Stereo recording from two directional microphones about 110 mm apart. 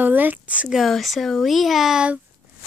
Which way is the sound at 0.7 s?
Centre (ahead or behind).